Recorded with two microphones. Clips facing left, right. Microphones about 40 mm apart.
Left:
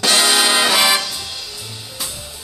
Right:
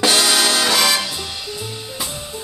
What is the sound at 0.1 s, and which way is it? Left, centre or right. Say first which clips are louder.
Music: left 1 dB; centre.